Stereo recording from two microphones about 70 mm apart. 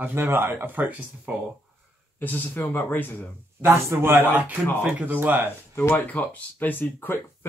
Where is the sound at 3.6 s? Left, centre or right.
Right.